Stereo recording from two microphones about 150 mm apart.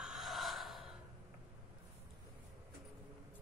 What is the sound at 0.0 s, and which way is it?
Gasp, centre (ahead or behind).